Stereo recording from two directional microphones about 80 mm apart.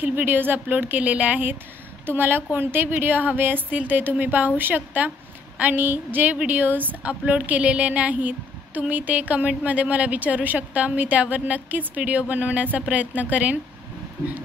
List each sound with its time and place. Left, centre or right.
0.0 s a woman's voice: right